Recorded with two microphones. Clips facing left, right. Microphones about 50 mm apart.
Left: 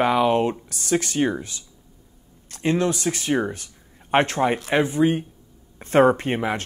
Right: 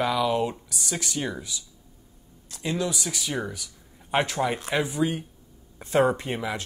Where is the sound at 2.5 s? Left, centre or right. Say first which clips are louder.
Left 7 dB; left.